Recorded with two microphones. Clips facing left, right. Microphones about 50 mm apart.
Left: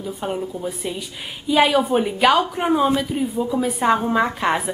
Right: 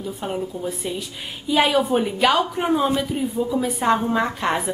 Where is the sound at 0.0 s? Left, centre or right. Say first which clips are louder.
Left 1 dB; centre.